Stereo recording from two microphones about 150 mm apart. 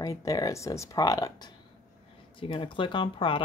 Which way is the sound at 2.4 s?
35° left (ahead or behind).